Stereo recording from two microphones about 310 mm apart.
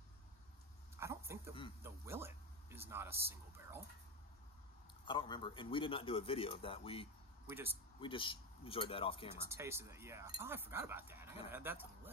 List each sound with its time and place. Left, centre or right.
0.9 s a sound: centre
1.8 s speech: centre
5.0 s speech: centre
7.4 s speech: centre
8.0 s speech: centre
9.5 s speech: centre